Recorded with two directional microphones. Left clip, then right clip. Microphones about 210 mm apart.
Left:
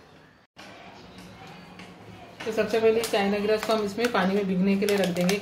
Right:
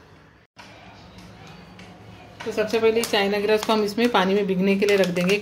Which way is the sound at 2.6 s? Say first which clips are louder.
Right 2 dB; 25° right (ahead or behind).